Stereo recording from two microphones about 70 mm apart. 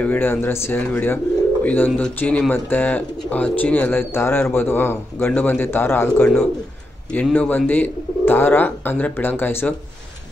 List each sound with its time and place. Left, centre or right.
0.0 s speech: left